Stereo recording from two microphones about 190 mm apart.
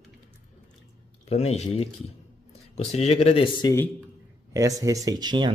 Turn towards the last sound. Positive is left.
turn(degrees=-25)  # may be behind; listen again after turning